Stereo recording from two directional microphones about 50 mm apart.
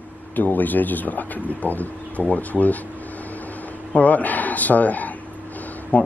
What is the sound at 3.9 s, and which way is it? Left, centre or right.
Speech, left.